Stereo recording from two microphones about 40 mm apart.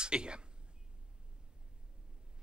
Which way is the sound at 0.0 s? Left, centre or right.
Right.